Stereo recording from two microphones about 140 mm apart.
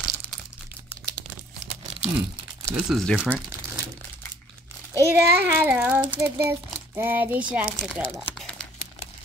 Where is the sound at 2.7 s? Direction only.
5° right (ahead or behind).